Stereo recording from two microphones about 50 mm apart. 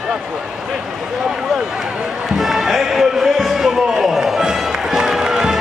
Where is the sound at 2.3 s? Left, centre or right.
Centre.